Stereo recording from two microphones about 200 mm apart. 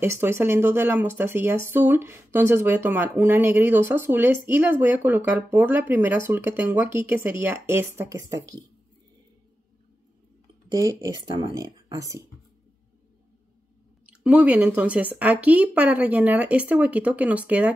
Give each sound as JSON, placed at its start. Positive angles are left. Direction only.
{"t": 0.0, "sound": "speech", "side_deg": -10}
{"t": 10.7, "sound": "speech", "side_deg": -15}
{"t": 14.0, "sound": "speech", "side_deg": -5}